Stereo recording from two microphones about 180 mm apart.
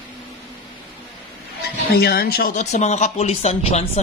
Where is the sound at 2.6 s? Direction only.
40° left (ahead or behind).